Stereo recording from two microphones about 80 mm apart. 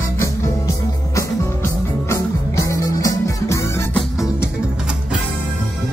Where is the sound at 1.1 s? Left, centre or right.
Left.